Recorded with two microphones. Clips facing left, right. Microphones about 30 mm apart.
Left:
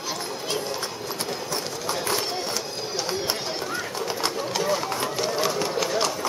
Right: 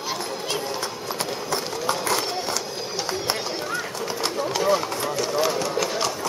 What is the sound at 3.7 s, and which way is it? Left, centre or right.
Bird, centre.